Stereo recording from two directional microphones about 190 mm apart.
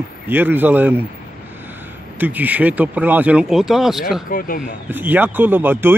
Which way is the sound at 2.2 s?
10° right (ahead or behind).